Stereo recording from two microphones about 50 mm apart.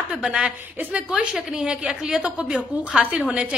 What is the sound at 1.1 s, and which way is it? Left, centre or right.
A woman's voice, centre.